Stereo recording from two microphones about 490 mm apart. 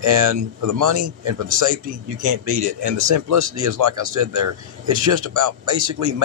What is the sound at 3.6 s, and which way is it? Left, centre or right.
Speech, right.